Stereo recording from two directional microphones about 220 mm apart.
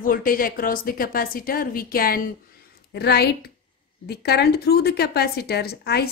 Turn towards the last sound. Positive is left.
turn(degrees=45)  # may be behind; listen again after turning